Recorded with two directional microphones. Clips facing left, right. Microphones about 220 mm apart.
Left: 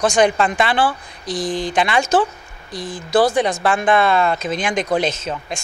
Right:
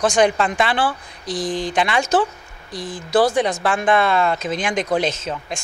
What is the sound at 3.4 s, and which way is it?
A woman's voice, 20° left (ahead or behind).